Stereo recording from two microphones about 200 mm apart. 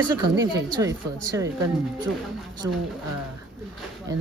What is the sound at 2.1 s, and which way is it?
Speech, centre (ahead or behind).